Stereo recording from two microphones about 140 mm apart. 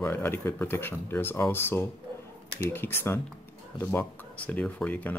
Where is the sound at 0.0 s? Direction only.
15° left (ahead or behind).